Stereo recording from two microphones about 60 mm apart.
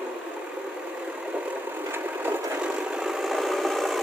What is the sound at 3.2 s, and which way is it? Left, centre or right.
Engine, centre.